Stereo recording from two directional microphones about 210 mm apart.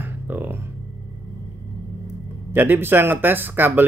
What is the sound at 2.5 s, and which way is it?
Speech, 10° right (ahead or behind).